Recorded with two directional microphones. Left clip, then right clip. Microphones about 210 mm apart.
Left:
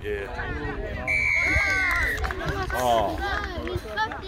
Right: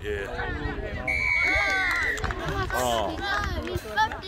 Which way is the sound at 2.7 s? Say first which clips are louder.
Left 4 dB; 15° right (ahead or behind).